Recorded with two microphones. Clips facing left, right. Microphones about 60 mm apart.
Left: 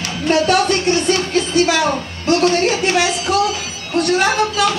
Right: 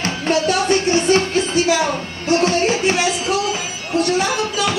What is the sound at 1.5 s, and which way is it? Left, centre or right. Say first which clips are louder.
Music: left 2 dB; left.